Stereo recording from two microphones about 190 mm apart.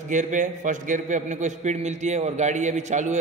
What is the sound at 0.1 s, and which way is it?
A man's voice, 40° right (ahead or behind).